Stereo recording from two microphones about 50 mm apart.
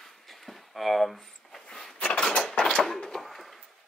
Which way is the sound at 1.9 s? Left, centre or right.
Left.